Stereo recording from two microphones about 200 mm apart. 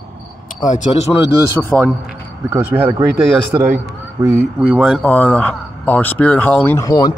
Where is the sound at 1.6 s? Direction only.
10° left (ahead or behind).